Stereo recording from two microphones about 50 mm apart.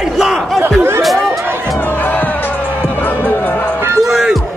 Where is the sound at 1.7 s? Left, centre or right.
Left.